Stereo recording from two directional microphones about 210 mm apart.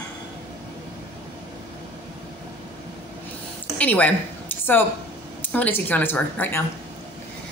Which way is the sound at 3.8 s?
5° left (ahead or behind).